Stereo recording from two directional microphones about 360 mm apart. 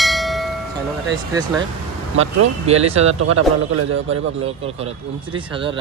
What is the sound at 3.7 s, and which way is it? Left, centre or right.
Speech, right.